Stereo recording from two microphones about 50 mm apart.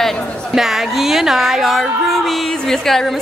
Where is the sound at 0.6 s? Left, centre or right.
Centre.